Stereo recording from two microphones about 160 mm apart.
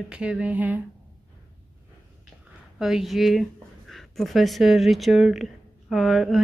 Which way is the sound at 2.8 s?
Centre (ahead or behind).